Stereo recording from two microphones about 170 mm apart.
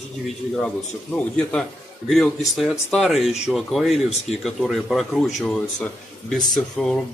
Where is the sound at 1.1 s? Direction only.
5° left (ahead or behind).